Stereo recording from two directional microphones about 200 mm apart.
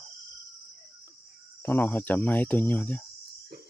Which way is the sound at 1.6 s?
10° left (ahead or behind).